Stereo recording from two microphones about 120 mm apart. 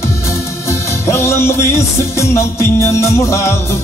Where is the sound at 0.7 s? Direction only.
20° left (ahead or behind).